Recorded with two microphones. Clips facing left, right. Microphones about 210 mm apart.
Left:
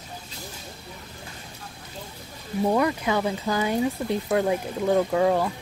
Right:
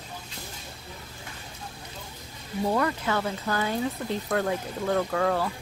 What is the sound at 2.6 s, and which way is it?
Speech, 15° left (ahead or behind).